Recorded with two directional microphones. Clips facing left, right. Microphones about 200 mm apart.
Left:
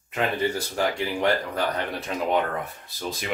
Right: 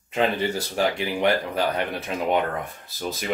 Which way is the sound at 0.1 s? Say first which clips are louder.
Right 2 dB; 25° right (ahead or behind).